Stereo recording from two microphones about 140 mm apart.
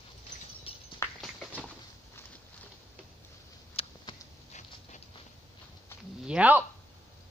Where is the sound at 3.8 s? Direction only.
45° left (ahead or behind).